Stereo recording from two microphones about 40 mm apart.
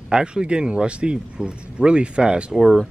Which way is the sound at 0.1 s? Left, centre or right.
Right.